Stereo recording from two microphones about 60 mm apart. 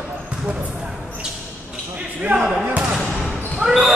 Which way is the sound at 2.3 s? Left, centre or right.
Right.